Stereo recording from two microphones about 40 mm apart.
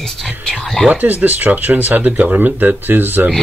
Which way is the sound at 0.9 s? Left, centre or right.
Right.